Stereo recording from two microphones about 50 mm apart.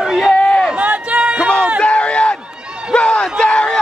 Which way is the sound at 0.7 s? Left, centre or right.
Right.